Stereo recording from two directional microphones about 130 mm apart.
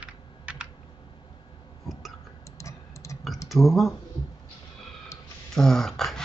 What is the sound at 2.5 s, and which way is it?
Typing, 25° left (ahead or behind).